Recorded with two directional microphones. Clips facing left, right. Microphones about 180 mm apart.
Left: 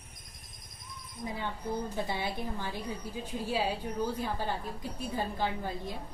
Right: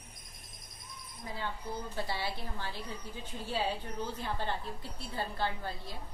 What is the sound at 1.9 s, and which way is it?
Speech, 20° left (ahead or behind).